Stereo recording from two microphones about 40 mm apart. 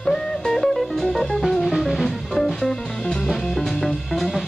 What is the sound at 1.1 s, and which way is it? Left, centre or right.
Music, centre.